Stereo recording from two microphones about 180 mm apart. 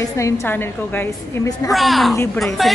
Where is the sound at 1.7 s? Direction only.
Centre (ahead or behind).